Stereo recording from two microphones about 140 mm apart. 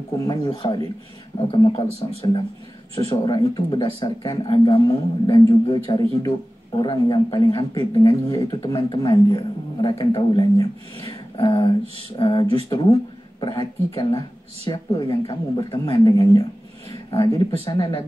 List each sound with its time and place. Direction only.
0.6 s a woman's voice: 30° left (ahead or behind)
4.7 s a woman's voice: 25° left (ahead or behind)
16.1 s speech: 25° left (ahead or behind)
17.5 s a woman's voice: 30° left (ahead or behind)